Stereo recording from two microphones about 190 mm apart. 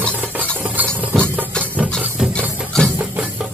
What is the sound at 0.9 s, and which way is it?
Music, 10° right (ahead or behind).